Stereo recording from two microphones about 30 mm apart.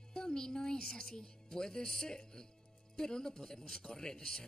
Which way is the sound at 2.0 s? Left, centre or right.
Left.